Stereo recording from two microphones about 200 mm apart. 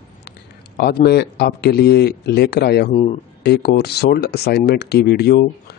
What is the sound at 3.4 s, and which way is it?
Speech, 55° left (ahead or behind).